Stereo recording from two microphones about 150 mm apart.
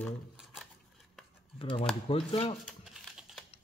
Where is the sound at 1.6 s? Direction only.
35° left (ahead or behind).